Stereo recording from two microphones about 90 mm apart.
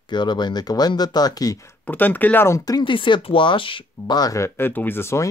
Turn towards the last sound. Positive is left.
turn(degrees=30)  # may be behind; listen again after turning